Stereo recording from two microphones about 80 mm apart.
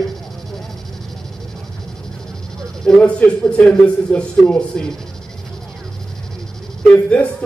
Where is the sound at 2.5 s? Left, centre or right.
Centre.